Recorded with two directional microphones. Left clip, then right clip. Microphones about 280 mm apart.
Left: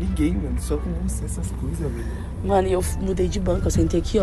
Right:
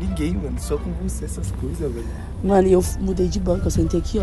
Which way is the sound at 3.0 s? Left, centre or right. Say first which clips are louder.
Right 1 dB; centre.